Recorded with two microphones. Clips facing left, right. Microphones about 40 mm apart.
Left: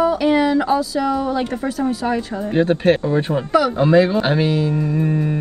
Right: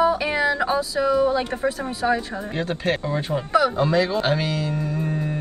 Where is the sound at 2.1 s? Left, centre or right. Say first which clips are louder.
Left 5 dB; left.